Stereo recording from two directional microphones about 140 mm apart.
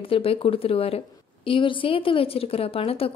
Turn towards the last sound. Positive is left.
turn(degrees=45)  # may be behind; listen again after turning